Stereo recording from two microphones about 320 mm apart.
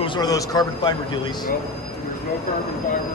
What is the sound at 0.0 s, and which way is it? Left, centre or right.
Speech, centre.